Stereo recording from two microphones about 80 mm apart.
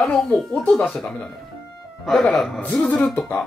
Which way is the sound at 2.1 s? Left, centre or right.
Centre.